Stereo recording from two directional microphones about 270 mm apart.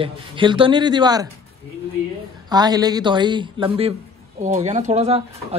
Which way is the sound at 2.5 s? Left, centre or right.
Centre.